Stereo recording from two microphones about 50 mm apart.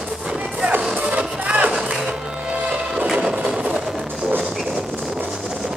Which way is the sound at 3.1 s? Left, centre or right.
Centre.